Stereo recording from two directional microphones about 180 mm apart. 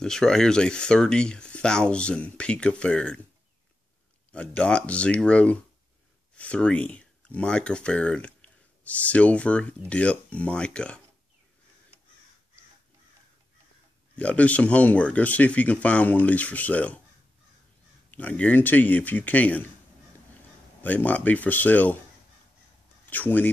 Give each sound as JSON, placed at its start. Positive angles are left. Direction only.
{"t": 0.0, "sound": "speech", "side_deg": 5}
{"t": 4.3, "sound": "speech", "side_deg": 5}
{"t": 14.1, "sound": "speech", "side_deg": 10}
{"t": 18.1, "sound": "speech", "side_deg": 10}
{"t": 20.8, "sound": "speech", "side_deg": 10}
{"t": 23.0, "sound": "speech", "side_deg": 10}